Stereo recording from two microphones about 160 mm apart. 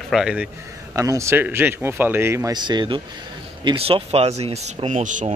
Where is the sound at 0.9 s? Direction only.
20° right (ahead or behind).